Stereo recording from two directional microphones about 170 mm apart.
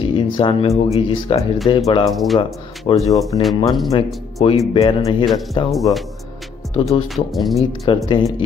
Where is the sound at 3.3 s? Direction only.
25° left (ahead or behind).